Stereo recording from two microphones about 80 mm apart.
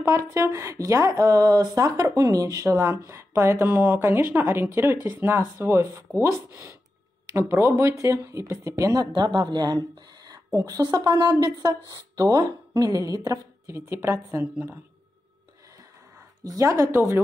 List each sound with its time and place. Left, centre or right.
0.1 s speech: right
9.0 s speech: right
16.4 s speech: right